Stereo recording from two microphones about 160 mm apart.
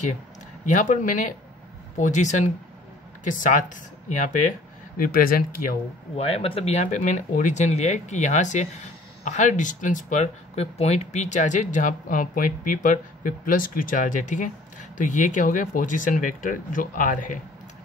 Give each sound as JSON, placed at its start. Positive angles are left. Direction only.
{"t": 0.7, "sound": "speech", "side_deg": 50}
{"t": 4.9, "sound": "speech", "side_deg": 60}
{"t": 6.1, "sound": "speech", "side_deg": 40}